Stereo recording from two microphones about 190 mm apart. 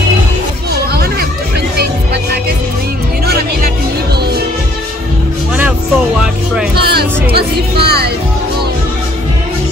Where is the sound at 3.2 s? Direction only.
55° right (ahead or behind).